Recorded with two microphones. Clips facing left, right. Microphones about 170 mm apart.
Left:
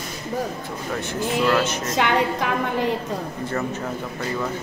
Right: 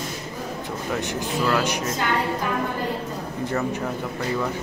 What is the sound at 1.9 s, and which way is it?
Speech, 90° left.